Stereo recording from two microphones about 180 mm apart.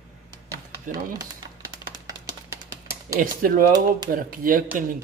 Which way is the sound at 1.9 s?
20° right (ahead or behind).